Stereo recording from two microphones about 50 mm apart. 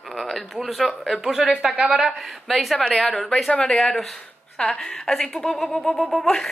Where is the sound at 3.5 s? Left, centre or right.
Centre.